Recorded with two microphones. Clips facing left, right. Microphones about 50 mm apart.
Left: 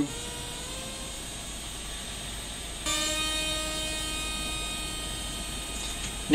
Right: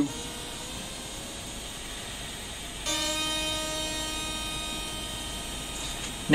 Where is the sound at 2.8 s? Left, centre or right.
Centre.